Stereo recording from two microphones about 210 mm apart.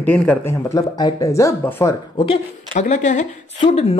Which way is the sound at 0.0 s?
5° left (ahead or behind).